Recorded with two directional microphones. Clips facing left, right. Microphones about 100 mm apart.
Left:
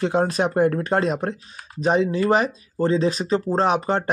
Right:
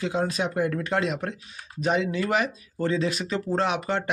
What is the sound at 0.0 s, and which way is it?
Speech, 50° left (ahead or behind).